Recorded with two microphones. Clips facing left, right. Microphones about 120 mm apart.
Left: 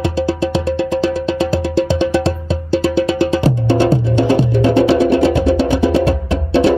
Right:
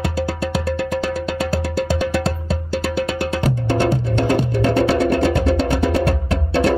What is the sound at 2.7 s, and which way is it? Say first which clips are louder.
Music: left 8 dB; 25° left (ahead or behind).